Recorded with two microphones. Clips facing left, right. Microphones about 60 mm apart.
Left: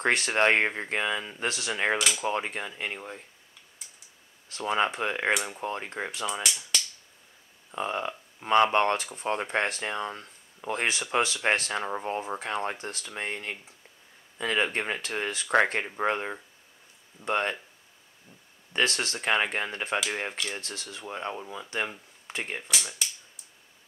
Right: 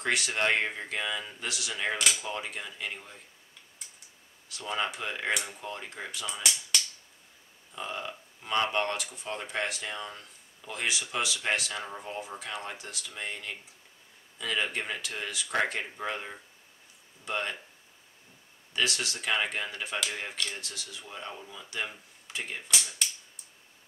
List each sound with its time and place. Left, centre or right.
0.0 s speech: left
2.0 s speech: centre
2.2 s speech: left
4.5 s speech: left
7.7 s speech: left
18.7 s speech: left